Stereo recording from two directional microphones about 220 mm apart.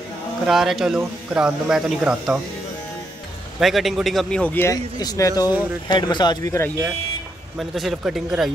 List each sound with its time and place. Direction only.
0.5 s a man's voice: centre (ahead or behind)
3.5 s a man's voice: centre (ahead or behind)
7.5 s a man's voice: centre (ahead or behind)